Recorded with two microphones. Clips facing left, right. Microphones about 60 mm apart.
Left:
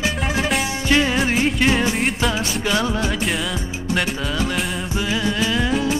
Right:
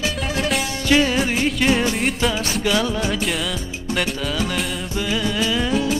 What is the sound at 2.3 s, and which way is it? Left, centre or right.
Music, centre.